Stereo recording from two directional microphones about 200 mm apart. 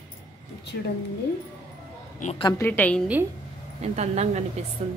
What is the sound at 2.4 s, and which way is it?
Speech, 20° left (ahead or behind).